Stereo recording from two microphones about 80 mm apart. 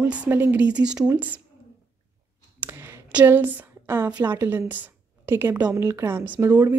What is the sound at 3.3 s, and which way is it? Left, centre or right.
Speech, right.